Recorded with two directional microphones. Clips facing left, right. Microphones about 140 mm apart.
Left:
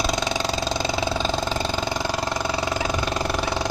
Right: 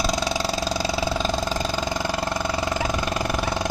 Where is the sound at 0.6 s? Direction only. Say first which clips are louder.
Even; 10° right (ahead or behind).